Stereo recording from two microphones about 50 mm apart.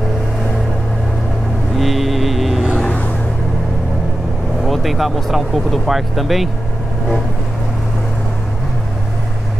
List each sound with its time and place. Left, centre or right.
1.8 s vehicle: centre
4.6 s speech: centre